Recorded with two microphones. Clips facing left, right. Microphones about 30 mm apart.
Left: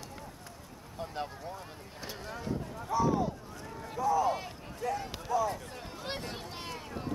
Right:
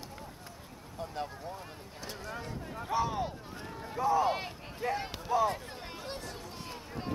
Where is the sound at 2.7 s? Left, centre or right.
Right.